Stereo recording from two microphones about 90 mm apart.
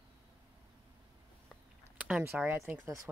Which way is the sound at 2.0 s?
15° right (ahead or behind).